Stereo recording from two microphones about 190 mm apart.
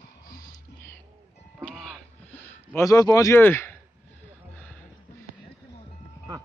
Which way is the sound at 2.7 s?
20° left (ahead or behind).